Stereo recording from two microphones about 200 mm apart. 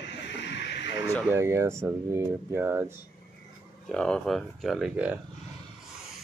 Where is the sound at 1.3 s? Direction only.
15° right (ahead or behind).